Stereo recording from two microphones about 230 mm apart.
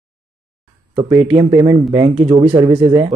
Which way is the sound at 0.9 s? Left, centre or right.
Right.